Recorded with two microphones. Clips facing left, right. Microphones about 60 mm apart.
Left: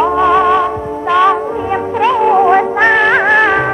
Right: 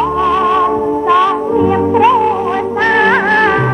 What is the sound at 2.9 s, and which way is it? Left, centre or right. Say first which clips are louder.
Music: right 2 dB; centre.